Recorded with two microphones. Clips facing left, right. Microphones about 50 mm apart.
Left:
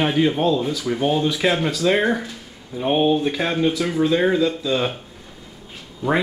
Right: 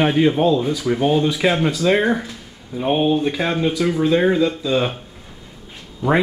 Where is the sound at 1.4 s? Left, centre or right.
Centre.